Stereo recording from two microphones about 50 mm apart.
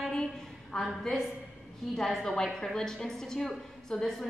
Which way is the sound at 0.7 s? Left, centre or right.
Centre.